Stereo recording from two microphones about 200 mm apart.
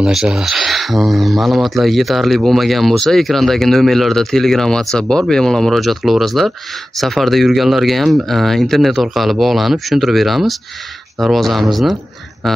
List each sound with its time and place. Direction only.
0.0 s speech: 5° right (ahead or behind)